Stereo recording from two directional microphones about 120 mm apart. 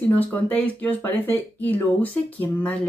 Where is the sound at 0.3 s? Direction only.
15° left (ahead or behind).